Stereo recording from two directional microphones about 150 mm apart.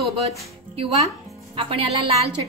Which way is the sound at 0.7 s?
45° right (ahead or behind).